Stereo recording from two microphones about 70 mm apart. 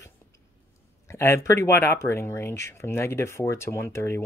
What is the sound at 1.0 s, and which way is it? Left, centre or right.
Speech, left.